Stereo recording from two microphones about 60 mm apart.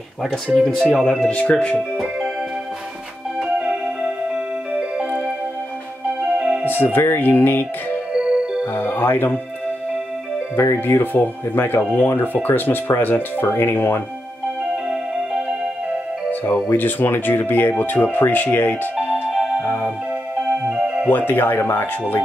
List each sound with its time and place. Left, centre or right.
0.6 s speech: centre
1.3 s speech: left
3.3 s music: centre
6.6 s speech: left
8.1 s music: centre
8.7 s speech: left
10.5 s speech: left
10.8 s speech: left
16.3 s music: left
16.7 s speech: left
19.3 s music: centre
20.7 s music: right
21.1 s speech: left